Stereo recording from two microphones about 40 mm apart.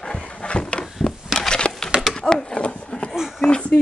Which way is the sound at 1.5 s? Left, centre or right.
Centre.